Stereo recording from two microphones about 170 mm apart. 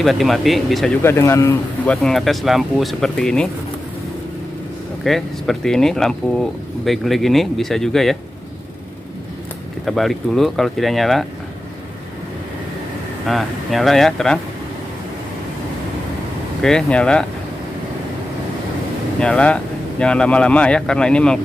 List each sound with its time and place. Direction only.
0.0 s speech: centre (ahead or behind)
1.0 s speech: 15° left (ahead or behind)
2.0 s speech: centre (ahead or behind)
5.0 s speech: centre (ahead or behind)
9.8 s speech: centre (ahead or behind)
13.3 s speech: centre (ahead or behind)
16.6 s speech: 5° left (ahead or behind)
19.1 s speech: 5° left (ahead or behind)